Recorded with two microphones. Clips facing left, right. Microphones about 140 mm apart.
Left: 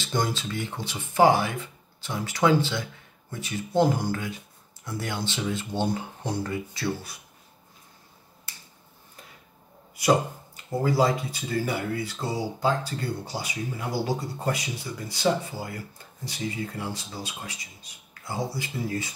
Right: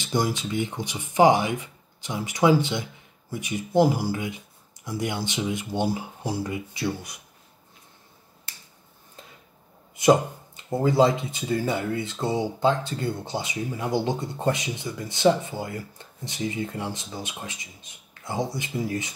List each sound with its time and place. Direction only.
0.0 s speech: 15° right (ahead or behind)
5.9 s speech: 5° right (ahead or behind)
9.9 s speech: 20° right (ahead or behind)